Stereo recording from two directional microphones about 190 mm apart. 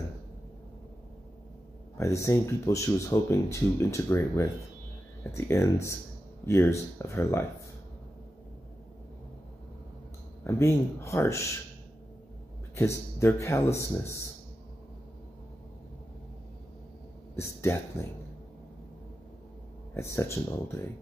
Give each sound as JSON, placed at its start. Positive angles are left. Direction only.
{"t": 2.0, "sound": "speech", "side_deg": 15}
{"t": 5.5, "sound": "speech", "side_deg": 15}
{"t": 10.4, "sound": "speech", "side_deg": 15}
{"t": 12.7, "sound": "speech", "side_deg": 15}
{"t": 17.4, "sound": "speech", "side_deg": 15}
{"t": 19.9, "sound": "speech", "side_deg": 15}